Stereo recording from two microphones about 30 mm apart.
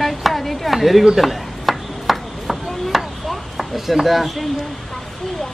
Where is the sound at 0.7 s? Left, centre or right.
Centre.